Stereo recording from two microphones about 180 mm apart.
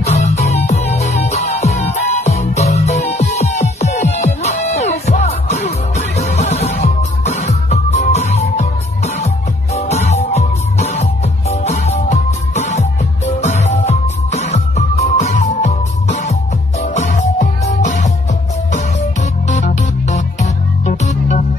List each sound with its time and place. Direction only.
0.0 s music: 40° left (ahead or behind)
19.5 s music: 40° left (ahead or behind)